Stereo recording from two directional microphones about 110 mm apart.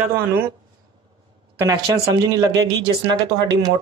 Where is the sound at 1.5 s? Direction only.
30° right (ahead or behind).